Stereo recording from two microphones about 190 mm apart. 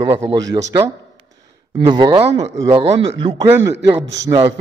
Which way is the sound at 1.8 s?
25° right (ahead or behind).